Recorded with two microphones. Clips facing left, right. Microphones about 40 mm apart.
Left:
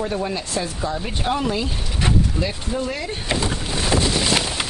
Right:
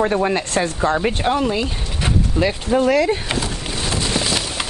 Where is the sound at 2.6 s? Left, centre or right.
Right.